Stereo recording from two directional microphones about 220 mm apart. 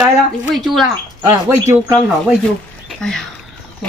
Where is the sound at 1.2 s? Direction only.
20° right (ahead or behind).